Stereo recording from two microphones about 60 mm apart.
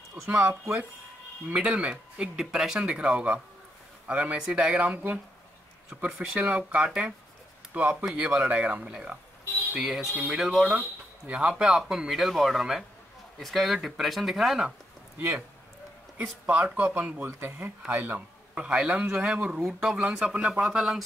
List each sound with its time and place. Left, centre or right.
0.3 s speech: right
1.5 s speech: centre
2.8 s speech: centre
4.9 s speech: right
6.0 s speech: centre
8.0 s speech: centre
9.8 s speech: centre
10.7 s speech: right
12.1 s speech: centre
16.2 s speech: right
17.3 s speech: right
17.6 s speech: right
18.5 s speech: centre